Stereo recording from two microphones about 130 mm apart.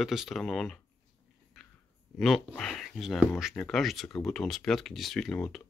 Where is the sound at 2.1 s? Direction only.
Centre (ahead or behind).